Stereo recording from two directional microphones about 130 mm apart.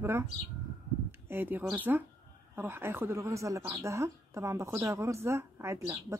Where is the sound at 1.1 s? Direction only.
15° right (ahead or behind).